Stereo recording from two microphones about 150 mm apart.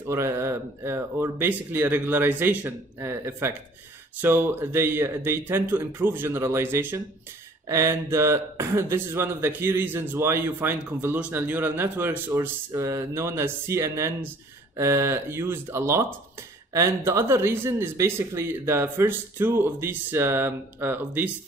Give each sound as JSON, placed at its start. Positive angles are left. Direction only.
{"t": 0.1, "sound": "speech", "side_deg": -15}